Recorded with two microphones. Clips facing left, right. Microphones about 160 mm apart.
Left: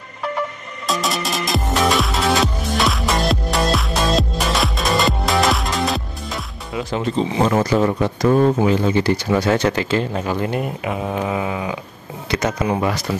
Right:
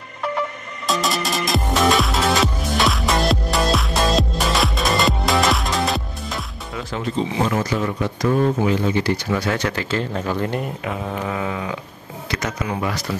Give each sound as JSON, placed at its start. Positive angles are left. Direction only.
{"t": 0.8, "sound": "music", "side_deg": 0}
{"t": 7.2, "sound": "speech", "side_deg": 35}
{"t": 8.6, "sound": "speech", "side_deg": 30}
{"t": 12.3, "sound": "speech", "side_deg": 25}